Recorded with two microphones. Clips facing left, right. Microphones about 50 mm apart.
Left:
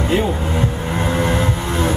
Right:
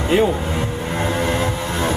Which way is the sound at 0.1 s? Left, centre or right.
Centre.